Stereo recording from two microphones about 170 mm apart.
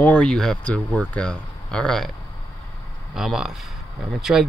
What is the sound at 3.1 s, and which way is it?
Speech, centre (ahead or behind).